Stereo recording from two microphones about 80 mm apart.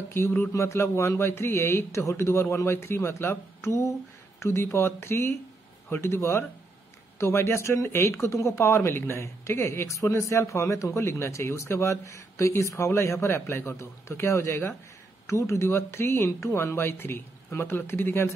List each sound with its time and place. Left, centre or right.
0.5 s speech: left